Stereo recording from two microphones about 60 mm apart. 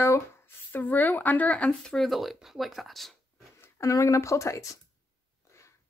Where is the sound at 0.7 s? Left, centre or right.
Left.